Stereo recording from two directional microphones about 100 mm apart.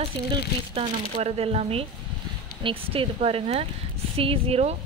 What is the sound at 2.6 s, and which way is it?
Speech, 70° right (ahead or behind).